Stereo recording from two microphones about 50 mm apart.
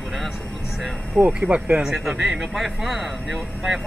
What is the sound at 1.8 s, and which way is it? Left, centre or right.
Speech, centre.